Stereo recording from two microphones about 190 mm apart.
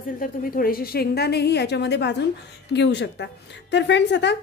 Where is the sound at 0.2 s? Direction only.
50° left (ahead or behind).